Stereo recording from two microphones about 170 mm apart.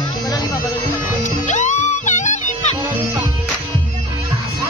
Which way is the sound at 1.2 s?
45° left (ahead or behind).